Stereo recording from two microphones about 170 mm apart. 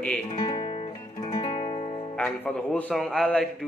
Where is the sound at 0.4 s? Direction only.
30° left (ahead or behind).